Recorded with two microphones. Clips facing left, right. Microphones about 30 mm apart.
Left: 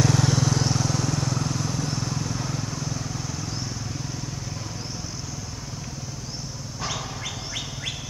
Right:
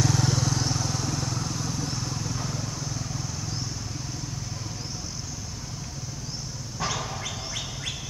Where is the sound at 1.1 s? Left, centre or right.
Left; by 3.6 s centre.